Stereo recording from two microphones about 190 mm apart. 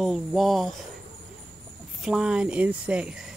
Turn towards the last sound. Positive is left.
turn(degrees=-5)  # may be behind; listen again after turning